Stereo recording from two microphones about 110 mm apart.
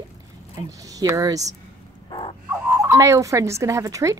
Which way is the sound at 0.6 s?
30° right (ahead or behind).